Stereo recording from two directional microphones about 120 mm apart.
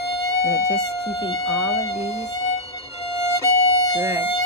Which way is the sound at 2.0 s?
65° left (ahead or behind).